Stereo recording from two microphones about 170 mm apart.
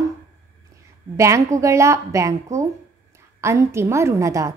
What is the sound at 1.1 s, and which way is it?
A woman's voice, 15° right (ahead or behind).